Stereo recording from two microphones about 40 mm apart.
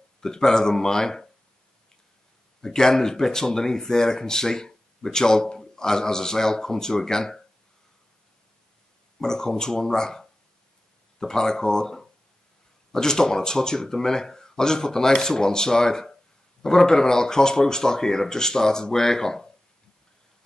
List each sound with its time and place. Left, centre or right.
0.2 s speech: centre
2.6 s speech: centre
9.2 s speech: centre